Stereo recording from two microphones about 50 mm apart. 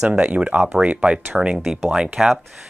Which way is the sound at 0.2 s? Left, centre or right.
Right.